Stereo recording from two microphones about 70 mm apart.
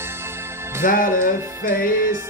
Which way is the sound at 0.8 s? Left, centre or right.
Right.